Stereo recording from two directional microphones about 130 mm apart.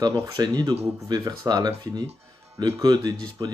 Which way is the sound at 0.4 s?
30° right (ahead or behind).